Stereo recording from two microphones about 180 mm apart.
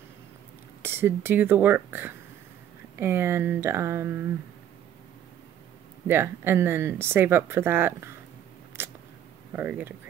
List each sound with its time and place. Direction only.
0.8 s speech: 10° right (ahead or behind)
6.0 s speech: 10° right (ahead or behind)
8.8 s a sound: 10° right (ahead or behind)
9.5 s speech: 10° right (ahead or behind)